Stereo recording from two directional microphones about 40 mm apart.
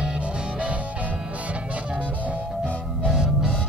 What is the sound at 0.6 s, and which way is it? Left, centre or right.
Music, right.